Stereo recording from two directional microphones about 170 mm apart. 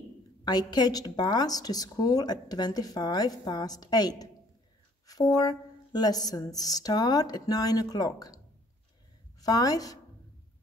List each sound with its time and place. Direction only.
0.5 s a woman's voice: 25° left (ahead or behind)
9.4 s a woman's voice: 20° left (ahead or behind)